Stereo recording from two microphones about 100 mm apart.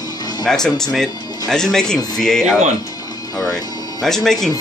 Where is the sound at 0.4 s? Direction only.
5° left (ahead or behind).